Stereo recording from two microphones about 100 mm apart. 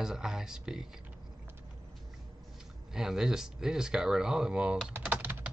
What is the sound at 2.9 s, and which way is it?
Speech, 5° right (ahead or behind).